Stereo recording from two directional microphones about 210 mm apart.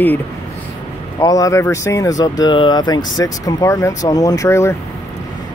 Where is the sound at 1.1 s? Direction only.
15° left (ahead or behind).